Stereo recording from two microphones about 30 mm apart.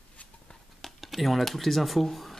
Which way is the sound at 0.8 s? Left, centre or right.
Centre.